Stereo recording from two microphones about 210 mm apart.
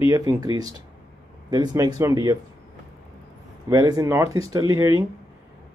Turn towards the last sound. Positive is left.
turn(degrees=-15)  # may be behind; listen again after turning